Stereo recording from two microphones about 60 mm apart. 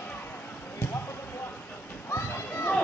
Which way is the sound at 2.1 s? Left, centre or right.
Left.